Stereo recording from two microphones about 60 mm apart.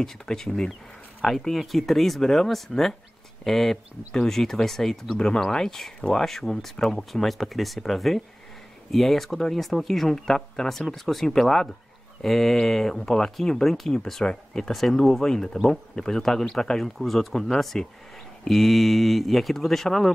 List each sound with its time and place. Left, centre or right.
0.0 s speech: centre
3.7 s speech: centre
4.3 s speech: centre